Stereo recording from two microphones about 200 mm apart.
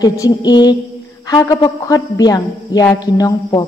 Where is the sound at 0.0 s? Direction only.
15° left (ahead or behind).